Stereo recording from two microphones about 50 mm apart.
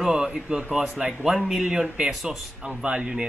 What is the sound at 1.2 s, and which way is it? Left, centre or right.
Speech, centre.